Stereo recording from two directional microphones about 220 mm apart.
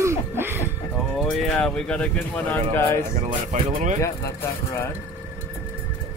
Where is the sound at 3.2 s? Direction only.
30° right (ahead or behind).